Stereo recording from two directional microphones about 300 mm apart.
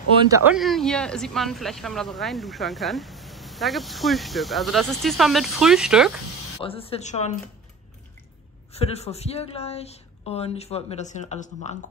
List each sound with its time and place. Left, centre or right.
0.3 s speech: centre
6.6 s a woman's voice: centre
8.7 s a woman's voice: left